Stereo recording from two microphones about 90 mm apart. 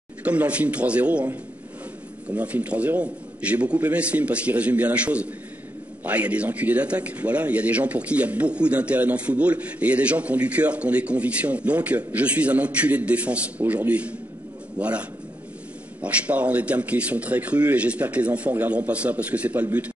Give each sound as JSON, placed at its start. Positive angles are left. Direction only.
{"t": 0.2, "sound": "speech", "side_deg": -15}